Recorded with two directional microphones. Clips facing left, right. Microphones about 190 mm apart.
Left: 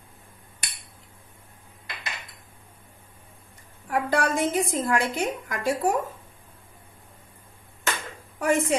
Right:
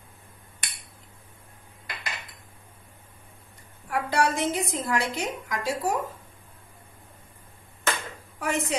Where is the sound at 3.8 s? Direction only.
50° left (ahead or behind).